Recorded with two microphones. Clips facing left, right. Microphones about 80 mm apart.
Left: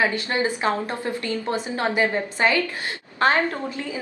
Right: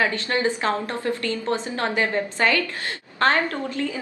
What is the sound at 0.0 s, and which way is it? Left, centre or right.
A woman's voice, centre.